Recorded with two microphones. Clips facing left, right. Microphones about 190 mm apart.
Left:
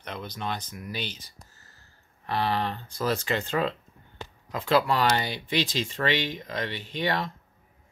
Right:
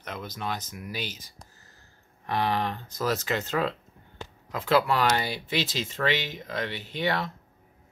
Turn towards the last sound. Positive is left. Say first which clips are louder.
# even
turn(degrees=-5)  # may be behind; listen again after turning